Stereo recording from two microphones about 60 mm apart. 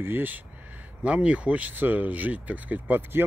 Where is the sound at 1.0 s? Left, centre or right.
Right.